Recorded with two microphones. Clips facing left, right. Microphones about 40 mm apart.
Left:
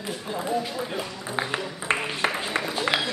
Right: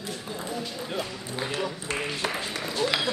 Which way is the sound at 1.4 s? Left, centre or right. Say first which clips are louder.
Left 1 dB; left.